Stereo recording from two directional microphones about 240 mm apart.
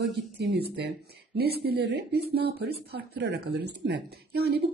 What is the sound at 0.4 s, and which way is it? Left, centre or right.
A woman's voice, right.